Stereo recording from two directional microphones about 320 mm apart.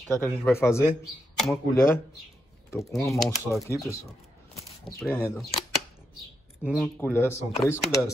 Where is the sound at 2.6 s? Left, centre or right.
Centre.